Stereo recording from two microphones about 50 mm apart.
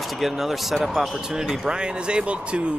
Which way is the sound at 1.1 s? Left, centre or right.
Centre.